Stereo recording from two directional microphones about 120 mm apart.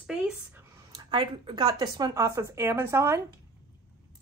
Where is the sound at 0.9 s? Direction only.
35° right (ahead or behind); by 3.2 s 20° right (ahead or behind).